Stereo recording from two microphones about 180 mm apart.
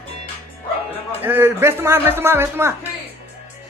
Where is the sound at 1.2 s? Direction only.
10° right (ahead or behind).